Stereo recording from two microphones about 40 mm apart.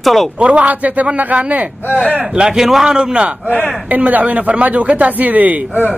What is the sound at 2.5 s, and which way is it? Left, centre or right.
Speech, centre.